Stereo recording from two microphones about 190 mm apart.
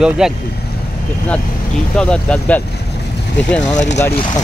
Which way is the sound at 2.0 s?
5° left (ahead or behind).